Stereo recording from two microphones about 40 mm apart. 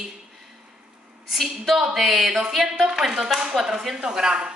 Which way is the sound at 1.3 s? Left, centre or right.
Centre.